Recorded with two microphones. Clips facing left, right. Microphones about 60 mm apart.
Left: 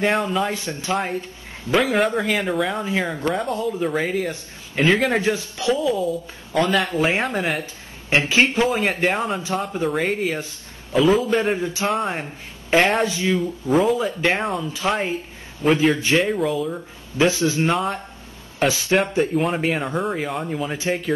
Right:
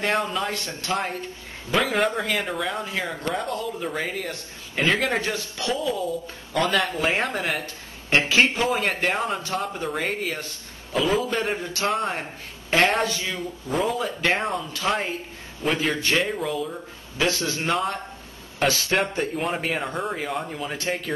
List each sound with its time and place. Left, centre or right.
0.0 s speech: centre